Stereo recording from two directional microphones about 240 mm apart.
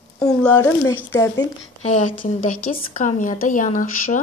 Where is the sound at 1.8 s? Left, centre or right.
Left.